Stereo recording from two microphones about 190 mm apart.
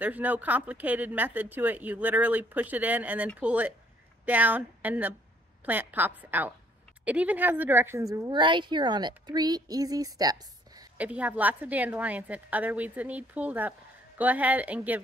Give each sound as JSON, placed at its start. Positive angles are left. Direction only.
{"t": 0.0, "sound": "a woman's voice", "side_deg": -10}
{"t": 11.0, "sound": "a woman's voice", "side_deg": -5}